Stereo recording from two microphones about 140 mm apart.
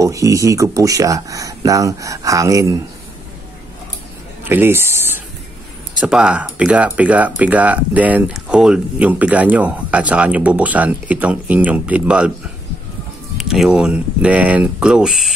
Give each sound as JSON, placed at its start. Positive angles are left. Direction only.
{"t": 0.0, "sound": "speech", "side_deg": -25}
{"t": 4.5, "sound": "speech", "side_deg": -15}
{"t": 5.9, "sound": "speech", "side_deg": -5}
{"t": 13.4, "sound": "speech", "side_deg": -5}